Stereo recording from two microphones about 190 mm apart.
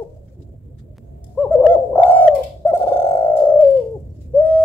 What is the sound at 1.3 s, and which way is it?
Bird, 10° left (ahead or behind).